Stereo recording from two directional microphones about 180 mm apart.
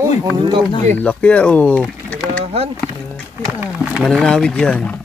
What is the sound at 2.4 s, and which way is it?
Rowboat, 35° right (ahead or behind).